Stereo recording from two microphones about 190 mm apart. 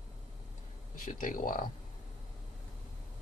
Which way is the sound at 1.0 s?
45° left (ahead or behind).